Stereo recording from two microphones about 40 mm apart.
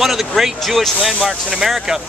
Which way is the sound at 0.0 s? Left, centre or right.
Centre.